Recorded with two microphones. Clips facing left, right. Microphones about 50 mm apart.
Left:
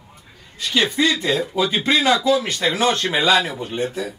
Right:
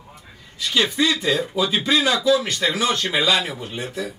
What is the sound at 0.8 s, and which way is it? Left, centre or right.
Speech, left.